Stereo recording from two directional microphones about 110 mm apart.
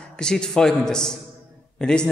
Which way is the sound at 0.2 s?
5° left (ahead or behind).